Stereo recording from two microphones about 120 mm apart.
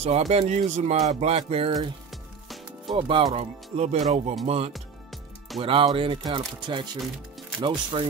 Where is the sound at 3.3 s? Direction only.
65° right (ahead or behind).